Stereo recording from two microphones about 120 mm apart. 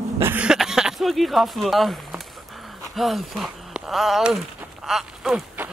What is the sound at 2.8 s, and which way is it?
Speech, centre (ahead or behind).